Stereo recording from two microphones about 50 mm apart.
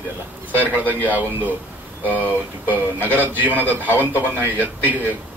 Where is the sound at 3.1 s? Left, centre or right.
Right.